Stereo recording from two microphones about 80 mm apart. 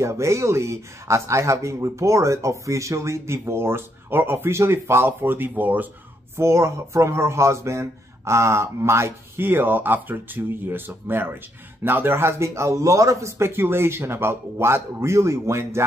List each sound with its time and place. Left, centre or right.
0.0 s speech: right
6.3 s speech: right